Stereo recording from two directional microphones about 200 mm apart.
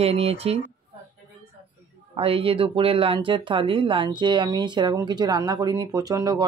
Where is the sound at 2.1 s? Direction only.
30° right (ahead or behind).